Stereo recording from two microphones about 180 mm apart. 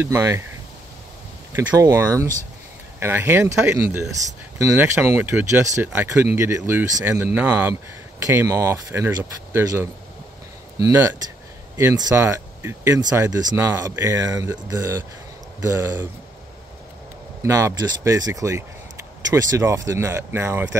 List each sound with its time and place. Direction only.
0.0 s speech: 15° right (ahead or behind)
1.5 s speech: 15° right (ahead or behind)
17.4 s speech: 15° right (ahead or behind)